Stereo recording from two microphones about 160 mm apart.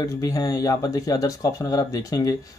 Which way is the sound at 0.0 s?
20° left (ahead or behind).